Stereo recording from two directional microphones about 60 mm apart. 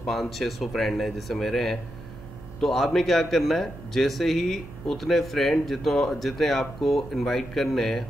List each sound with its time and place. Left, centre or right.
0.0 s speech: centre